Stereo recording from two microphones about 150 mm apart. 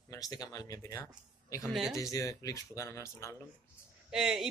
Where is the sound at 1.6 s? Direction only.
Centre (ahead or behind).